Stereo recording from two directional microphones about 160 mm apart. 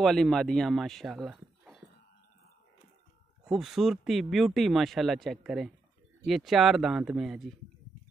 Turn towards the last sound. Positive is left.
turn(degrees=0)  # may be behind; listen again after turning